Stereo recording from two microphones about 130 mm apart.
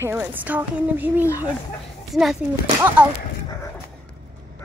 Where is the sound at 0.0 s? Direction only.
15° right (ahead or behind).